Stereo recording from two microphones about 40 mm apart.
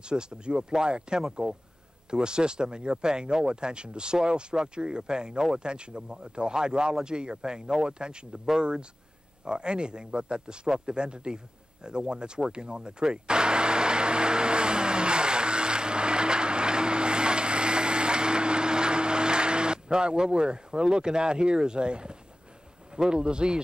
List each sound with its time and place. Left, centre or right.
0.0 s speech: right
9.4 s a sound: right
22.9 s speech: right